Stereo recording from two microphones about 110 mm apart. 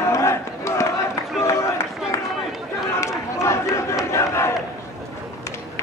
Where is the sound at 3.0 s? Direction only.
25° left (ahead or behind).